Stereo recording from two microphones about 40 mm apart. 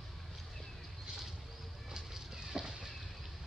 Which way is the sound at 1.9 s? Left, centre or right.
Centre.